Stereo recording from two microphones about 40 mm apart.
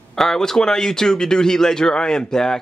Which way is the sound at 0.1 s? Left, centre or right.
Centre.